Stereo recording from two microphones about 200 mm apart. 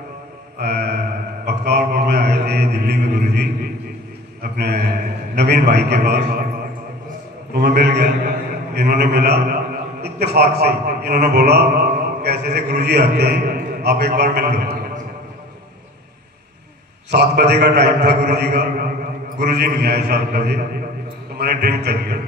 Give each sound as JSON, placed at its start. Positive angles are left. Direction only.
{"t": 0.6, "sound": "mantra", "side_deg": -55}
{"t": 2.0, "sound": "a sound", "side_deg": -55}
{"t": 5.3, "sound": "a man's voice", "side_deg": -55}
{"t": 7.5, "sound": "a man's voice", "side_deg": -55}
{"t": 17.1, "sound": "a man's voice", "side_deg": -55}